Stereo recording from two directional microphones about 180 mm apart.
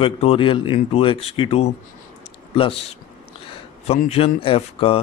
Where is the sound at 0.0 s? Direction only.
30° left (ahead or behind).